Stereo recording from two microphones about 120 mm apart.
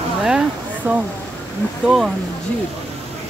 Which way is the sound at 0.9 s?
15° right (ahead or behind).